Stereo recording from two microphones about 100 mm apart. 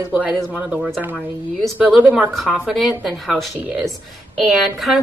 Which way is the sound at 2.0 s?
15° right (ahead or behind).